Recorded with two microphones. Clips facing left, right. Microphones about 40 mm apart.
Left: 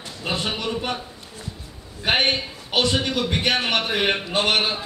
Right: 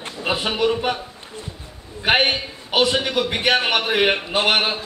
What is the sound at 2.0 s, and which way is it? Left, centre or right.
A man's voice, centre.